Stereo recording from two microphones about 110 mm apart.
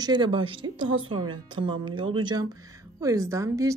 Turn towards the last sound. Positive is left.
turn(degrees=-30)  # may be behind; listen again after turning